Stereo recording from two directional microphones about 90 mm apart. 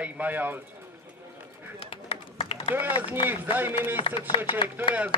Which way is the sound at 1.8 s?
90° left.